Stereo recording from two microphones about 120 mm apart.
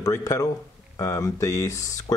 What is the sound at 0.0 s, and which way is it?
Speech, 25° left (ahead or behind).